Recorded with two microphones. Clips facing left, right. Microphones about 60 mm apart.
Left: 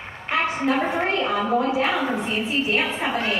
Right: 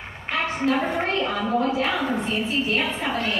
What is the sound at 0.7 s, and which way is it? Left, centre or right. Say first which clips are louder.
A woman's voice: right 1 dB; centre.